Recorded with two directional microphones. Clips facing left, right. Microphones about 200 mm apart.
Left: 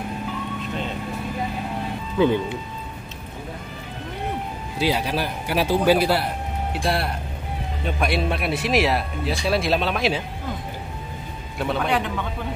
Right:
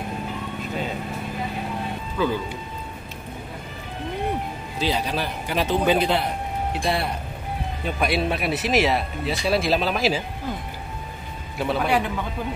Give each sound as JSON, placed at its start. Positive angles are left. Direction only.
{"t": 2.1, "sound": "speech", "side_deg": 20}
{"t": 4.7, "sound": "a man's voice", "side_deg": 10}
{"t": 11.5, "sound": "speech", "side_deg": 0}